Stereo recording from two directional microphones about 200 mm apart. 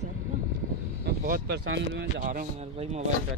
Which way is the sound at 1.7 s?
60° right (ahead or behind).